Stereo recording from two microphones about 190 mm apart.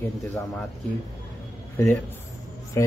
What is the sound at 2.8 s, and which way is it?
Speech, 15° left (ahead or behind).